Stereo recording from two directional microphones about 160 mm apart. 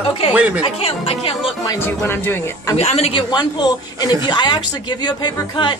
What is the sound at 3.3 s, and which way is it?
A man's voice, 25° left (ahead or behind).